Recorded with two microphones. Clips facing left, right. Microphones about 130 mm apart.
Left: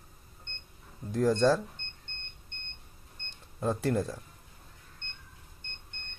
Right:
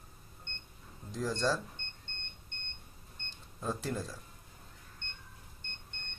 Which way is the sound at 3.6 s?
60° left (ahead or behind).